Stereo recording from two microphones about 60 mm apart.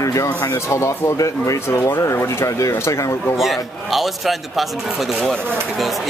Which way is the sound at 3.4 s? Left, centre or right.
Centre.